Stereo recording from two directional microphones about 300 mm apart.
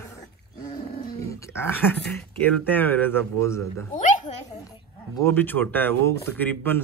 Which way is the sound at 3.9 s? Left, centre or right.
Left.